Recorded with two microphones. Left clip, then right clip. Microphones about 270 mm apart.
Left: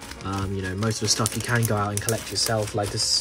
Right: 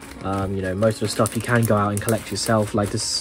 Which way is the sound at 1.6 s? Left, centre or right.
Right.